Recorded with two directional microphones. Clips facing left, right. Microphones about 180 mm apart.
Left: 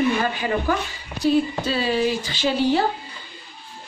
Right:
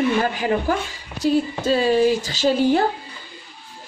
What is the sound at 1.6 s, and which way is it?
A woman's voice, 45° right (ahead or behind).